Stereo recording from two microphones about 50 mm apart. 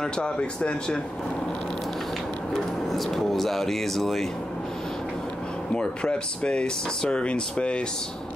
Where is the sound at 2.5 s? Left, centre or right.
Centre.